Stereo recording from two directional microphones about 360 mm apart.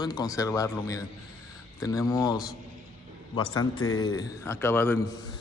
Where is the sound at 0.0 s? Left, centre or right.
Centre.